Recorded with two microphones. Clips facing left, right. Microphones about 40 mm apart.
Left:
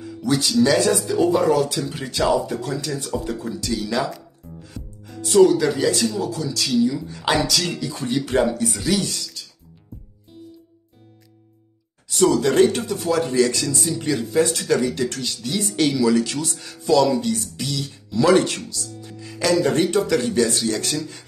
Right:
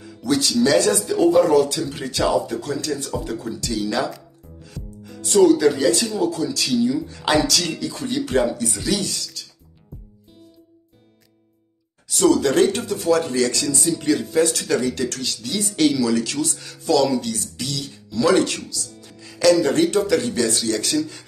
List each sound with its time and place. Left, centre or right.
0.0 s speech: centre
4.6 s music: centre
5.0 s speech: centre
12.1 s speech: centre
18.2 s speech: left
18.8 s music: centre
19.6 s speech: centre